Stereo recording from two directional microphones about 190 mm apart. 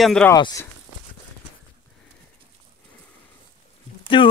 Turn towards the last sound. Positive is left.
turn(degrees=25)  # may be behind; listen again after turning